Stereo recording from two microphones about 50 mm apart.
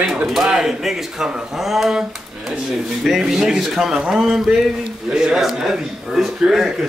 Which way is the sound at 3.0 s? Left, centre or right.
Centre.